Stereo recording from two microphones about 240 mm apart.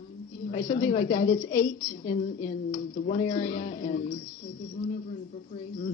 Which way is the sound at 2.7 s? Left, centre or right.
Left.